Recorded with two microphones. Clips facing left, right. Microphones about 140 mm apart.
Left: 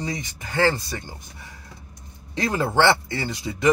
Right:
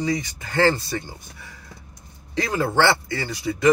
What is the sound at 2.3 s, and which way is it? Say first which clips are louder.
Speech: even; 25° left (ahead or behind).